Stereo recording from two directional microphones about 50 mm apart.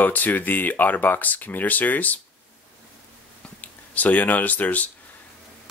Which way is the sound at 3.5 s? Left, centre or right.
Left.